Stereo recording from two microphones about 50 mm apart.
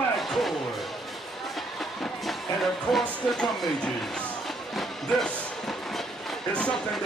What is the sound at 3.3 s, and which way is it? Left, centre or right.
Speech, centre.